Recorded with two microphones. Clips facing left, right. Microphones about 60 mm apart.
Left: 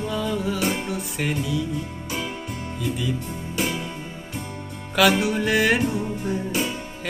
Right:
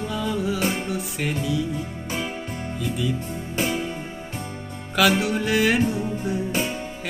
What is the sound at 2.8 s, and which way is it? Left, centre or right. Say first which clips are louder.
Music: even; centre.